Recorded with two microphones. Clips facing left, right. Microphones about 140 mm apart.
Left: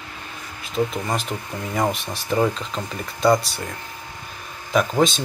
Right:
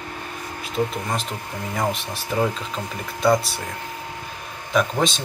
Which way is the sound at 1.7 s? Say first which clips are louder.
Left 2 dB; centre (ahead or behind).